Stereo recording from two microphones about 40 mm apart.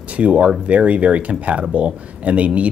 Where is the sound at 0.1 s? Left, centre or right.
Right.